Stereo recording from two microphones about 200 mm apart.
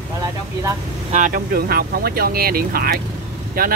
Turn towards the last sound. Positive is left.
turn(degrees=-45)  # may be behind; listen again after turning